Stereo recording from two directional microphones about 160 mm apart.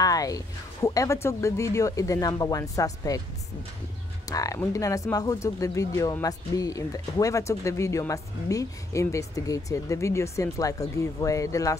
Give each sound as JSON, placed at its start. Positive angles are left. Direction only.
{"t": 0.0, "sound": "music", "side_deg": 20}
{"t": 0.8, "sound": "speech", "side_deg": 20}
{"t": 4.3, "sound": "speech", "side_deg": 20}